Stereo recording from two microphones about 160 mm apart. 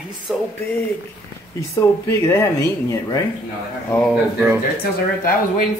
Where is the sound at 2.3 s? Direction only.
15° left (ahead or behind).